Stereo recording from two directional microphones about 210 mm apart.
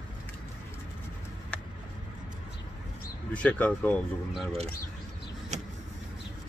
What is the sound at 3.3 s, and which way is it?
Speech, 5° left (ahead or behind).